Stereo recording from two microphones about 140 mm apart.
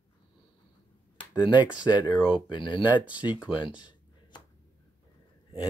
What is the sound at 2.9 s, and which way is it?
Speech, 10° right (ahead or behind).